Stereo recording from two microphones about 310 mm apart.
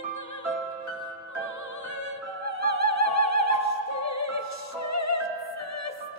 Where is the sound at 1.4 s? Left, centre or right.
Left.